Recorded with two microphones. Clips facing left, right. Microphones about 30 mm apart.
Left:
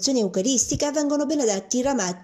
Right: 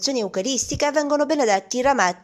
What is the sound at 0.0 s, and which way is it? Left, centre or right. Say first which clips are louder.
A woman's voice: left 1 dB; centre.